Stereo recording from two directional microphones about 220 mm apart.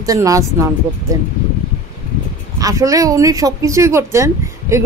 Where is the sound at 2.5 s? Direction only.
15° right (ahead or behind).